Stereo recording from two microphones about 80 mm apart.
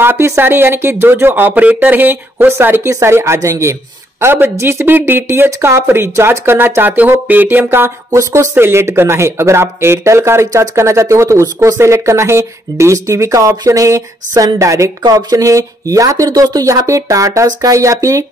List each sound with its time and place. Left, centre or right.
0.0 s speech: right
8.1 s speech: right
15.0 s speech: right